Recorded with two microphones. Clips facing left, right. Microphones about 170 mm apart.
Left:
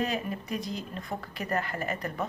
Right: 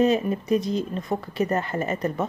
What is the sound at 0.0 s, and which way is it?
Speech, 25° right (ahead or behind).